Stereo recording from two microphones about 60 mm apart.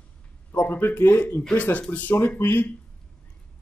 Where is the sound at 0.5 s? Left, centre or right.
Left.